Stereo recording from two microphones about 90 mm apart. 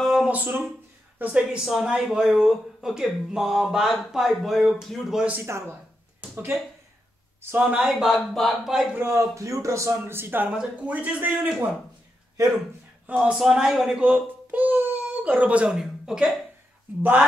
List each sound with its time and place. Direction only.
0.0 s a sound: 5° right (ahead or behind)
0.3 s speech: 20° right (ahead or behind)
1.6 s speech: 5° right (ahead or behind)
5.4 s a man's voice: 30° right (ahead or behind)
7.5 s a man's voice: 10° right (ahead or behind)
8.1 s speech: centre (ahead or behind)
8.9 s a man's voice: 30° right (ahead or behind)
10.5 s a man's voice: 10° right (ahead or behind)
13.0 s a child's voice: 15° right (ahead or behind)
17.0 s speech: 20° right (ahead or behind)